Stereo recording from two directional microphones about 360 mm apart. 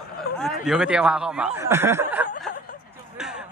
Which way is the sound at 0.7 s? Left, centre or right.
Centre.